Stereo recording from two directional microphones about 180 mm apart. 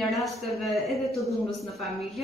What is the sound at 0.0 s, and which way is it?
Speech, centre (ahead or behind).